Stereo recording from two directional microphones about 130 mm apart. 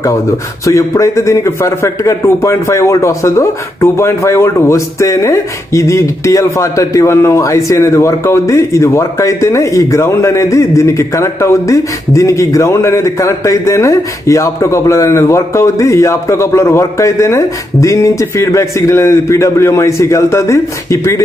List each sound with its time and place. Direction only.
0.7 s a man's voice: 25° left (ahead or behind)